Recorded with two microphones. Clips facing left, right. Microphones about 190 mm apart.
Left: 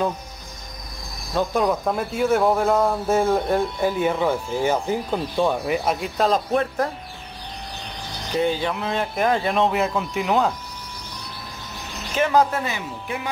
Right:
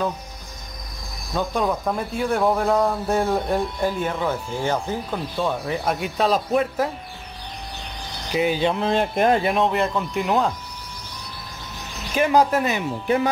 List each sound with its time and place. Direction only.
1.3 s speech: centre (ahead or behind)
5.9 s speech: centre (ahead or behind)
8.3 s speech: 10° right (ahead or behind)
8.6 s speech: 30° right (ahead or behind)
9.3 s speech: 10° right (ahead or behind)
9.6 s speech: 5° left (ahead or behind)
12.2 s speech: 15° right (ahead or behind)